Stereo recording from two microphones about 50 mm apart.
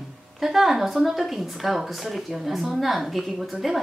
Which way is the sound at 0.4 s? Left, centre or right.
Centre.